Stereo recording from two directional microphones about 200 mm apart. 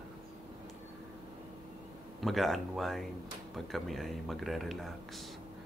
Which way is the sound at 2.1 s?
Centre (ahead or behind).